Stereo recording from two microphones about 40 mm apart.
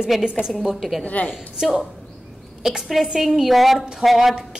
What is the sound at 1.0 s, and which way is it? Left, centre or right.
Speech, left.